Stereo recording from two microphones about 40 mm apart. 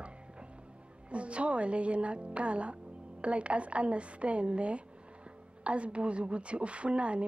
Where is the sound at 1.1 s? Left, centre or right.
Right.